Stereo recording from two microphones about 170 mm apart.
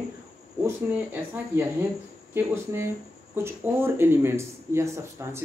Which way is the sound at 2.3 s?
15° right (ahead or behind).